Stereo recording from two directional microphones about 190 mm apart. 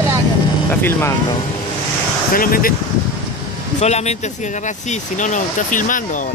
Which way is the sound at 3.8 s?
35° left (ahead or behind).